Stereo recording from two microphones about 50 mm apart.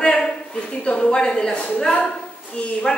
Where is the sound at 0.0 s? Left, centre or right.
Centre.